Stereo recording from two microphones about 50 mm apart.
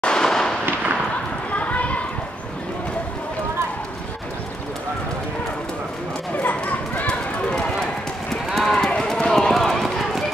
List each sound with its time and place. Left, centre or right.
0.0 s fireworks: centre
1.5 s children playing: left
6.3 s clip-clop: left
7.1 s run: left; by 10.2 s centre